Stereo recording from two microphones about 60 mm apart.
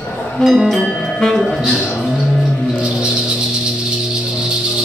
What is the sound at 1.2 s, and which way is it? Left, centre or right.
Music, centre.